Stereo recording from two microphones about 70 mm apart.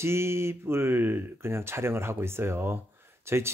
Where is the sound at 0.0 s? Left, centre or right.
Right.